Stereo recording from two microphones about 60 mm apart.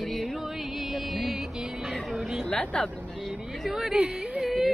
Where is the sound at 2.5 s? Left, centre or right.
Centre.